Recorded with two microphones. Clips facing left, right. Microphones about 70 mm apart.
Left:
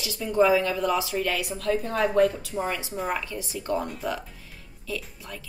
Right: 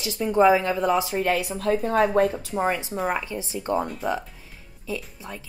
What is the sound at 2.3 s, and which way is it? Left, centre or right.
Speech, right.